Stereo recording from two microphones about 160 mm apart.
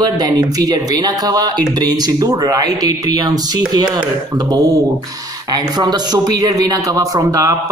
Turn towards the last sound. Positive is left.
turn(degrees=-20)  # may be behind; listen again after turning